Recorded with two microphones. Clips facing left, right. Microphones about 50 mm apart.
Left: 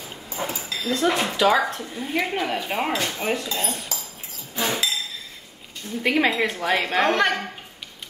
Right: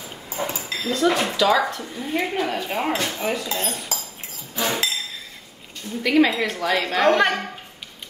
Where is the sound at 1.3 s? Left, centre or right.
Left; by 3.3 s centre.